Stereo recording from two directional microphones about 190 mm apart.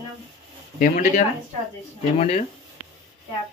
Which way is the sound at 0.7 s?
40° left (ahead or behind).